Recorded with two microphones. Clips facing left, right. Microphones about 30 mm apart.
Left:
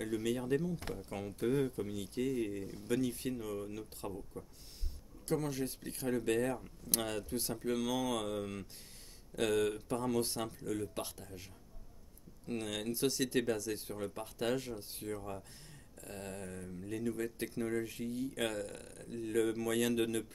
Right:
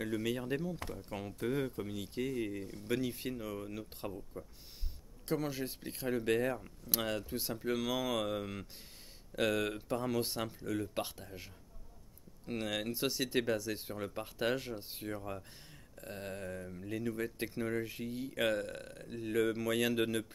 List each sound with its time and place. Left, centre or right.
0.0 s speech: centre